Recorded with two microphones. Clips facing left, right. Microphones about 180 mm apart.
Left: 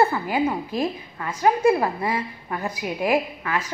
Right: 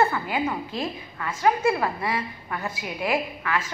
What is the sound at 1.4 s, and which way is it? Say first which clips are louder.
Speech: left 4 dB; 40° left (ahead or behind).